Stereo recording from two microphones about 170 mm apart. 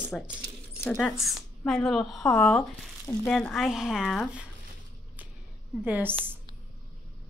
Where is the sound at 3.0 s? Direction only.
15° left (ahead or behind); by 4.5 s 5° right (ahead or behind).